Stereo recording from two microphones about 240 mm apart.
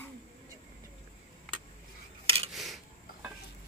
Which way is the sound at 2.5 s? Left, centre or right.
Centre.